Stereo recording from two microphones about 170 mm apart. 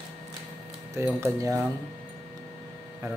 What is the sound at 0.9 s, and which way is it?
Speech, 15° right (ahead or behind).